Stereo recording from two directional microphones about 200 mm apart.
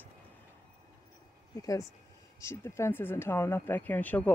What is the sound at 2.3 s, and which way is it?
Speech, 15° left (ahead or behind).